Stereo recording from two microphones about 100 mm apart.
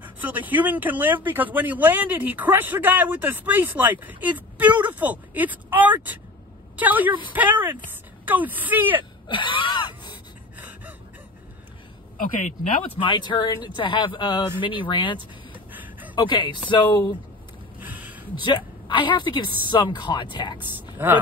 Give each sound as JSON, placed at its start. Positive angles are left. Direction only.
{"t": 0.0, "sound": "speech", "side_deg": -15}
{"t": 9.3, "sound": "wheeze", "side_deg": 55}
{"t": 13.0, "sound": "a woman's voice", "side_deg": 55}
{"t": 14.6, "sound": "speech", "side_deg": 55}
{"t": 15.7, "sound": "a sound", "side_deg": -15}
{"t": 16.2, "sound": "a woman's voice", "side_deg": 50}
{"t": 17.7, "sound": "a sound", "side_deg": -15}
{"t": 18.4, "sound": "a woman's voice", "side_deg": 55}
{"t": 20.5, "sound": "speech", "side_deg": -20}